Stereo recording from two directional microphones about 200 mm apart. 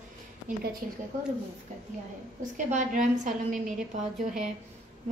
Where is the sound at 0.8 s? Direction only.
40° right (ahead or behind).